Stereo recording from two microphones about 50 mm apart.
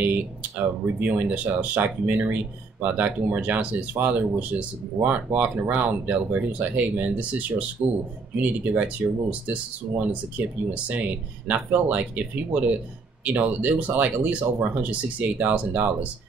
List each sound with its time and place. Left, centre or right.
0.0 s speech: right